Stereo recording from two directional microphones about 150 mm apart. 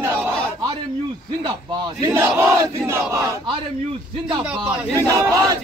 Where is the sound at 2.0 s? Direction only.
20° right (ahead or behind).